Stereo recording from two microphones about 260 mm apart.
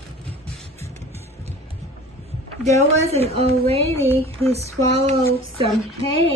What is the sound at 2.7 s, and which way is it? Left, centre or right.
Speech, right.